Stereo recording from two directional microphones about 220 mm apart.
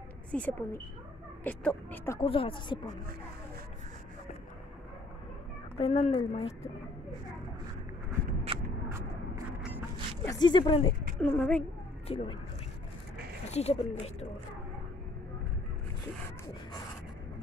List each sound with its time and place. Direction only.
0.3 s speech: 5° left (ahead or behind)
2.1 s a woman's voice: 25° left (ahead or behind)
5.8 s a woman's voice: 30° left (ahead or behind)
8.5 s a sound: 25° right (ahead or behind)
10.2 s a woman's voice: 20° left (ahead or behind)
11.1 s speech: 5° left (ahead or behind)
12.1 s a woman's voice: 25° left (ahead or behind)
13.5 s a woman's voice: 30° left (ahead or behind)